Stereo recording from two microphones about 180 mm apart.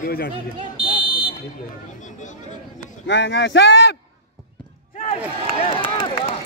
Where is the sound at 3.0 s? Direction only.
75° left (ahead or behind).